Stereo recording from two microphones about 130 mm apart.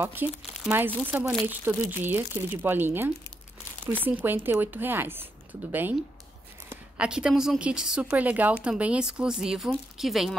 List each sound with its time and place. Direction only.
0.0 s speech: 15° right (ahead or behind)